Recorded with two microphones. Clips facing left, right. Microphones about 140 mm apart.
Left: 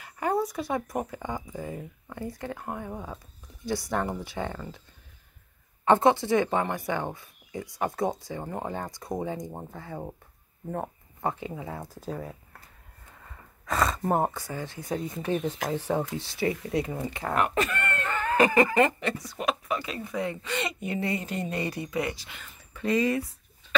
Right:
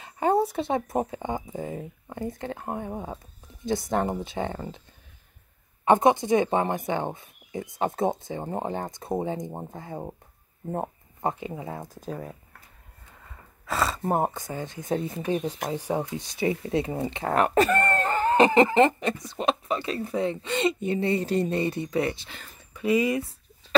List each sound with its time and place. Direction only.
0.0 s speech: 30° right (ahead or behind)
5.9 s speech: 15° right (ahead or behind)
12.0 s speech: 15° right (ahead or behind)
14.1 s speech: 15° right (ahead or behind)
22.8 s speech: 10° right (ahead or behind)